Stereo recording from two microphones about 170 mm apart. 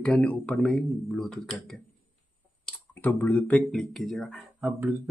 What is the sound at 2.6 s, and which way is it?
Speech, 10° left (ahead or behind).